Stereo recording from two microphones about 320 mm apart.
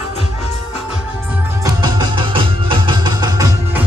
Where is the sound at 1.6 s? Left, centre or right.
Centre.